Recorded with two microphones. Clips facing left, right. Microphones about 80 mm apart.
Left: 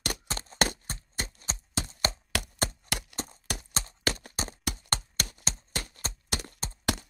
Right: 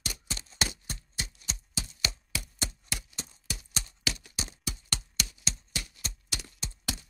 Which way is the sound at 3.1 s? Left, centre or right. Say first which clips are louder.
Left 6 dB; left.